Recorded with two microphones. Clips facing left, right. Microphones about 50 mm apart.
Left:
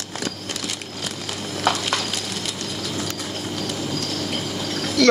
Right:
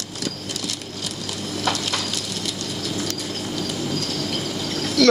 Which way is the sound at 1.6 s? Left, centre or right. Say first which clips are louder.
Left 3 dB; left.